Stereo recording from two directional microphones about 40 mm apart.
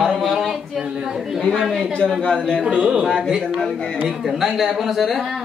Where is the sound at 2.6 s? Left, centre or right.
Right.